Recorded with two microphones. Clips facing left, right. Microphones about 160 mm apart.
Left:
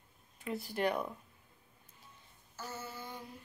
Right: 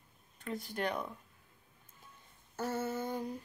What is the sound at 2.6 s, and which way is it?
Female singing, 55° right (ahead or behind).